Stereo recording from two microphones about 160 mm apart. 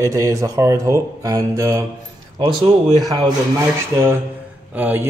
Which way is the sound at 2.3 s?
35° right (ahead or behind).